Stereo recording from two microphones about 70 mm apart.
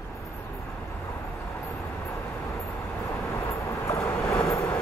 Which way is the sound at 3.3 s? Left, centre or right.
Left.